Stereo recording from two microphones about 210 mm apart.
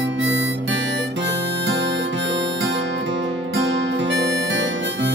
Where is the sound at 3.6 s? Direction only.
60° right (ahead or behind).